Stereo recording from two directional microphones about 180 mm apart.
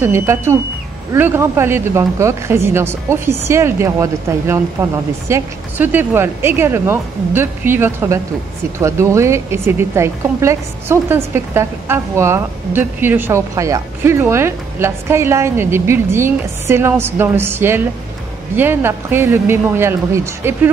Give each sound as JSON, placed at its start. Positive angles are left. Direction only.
{"t": 0.0, "sound": "a woman's voice", "side_deg": -15}